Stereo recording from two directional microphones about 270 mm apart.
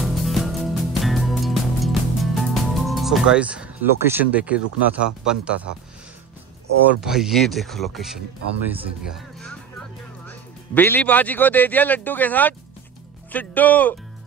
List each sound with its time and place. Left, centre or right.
0.0 s music: centre
5.0 s speech: centre
7.0 s speech: centre
9.1 s music: centre
10.2 s speech: centre